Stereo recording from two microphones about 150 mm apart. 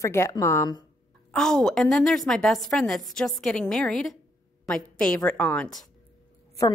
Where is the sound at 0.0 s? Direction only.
20° left (ahead or behind).